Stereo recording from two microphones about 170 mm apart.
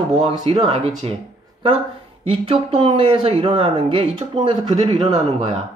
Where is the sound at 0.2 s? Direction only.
30° right (ahead or behind).